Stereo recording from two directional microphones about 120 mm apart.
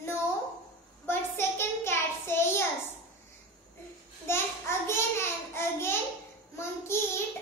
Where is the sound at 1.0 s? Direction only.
20° left (ahead or behind).